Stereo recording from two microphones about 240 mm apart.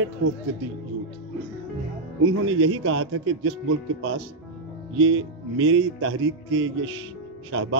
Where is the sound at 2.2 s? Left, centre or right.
Right.